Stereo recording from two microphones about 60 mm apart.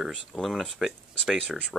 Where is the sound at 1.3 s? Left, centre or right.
Right.